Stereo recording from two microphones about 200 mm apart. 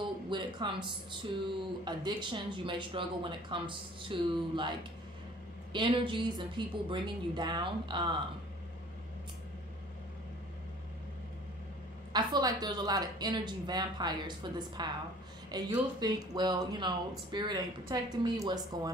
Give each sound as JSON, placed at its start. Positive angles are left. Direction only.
{"t": 0.0, "sound": "speech", "side_deg": -25}
{"t": 12.1, "sound": "speech", "side_deg": -20}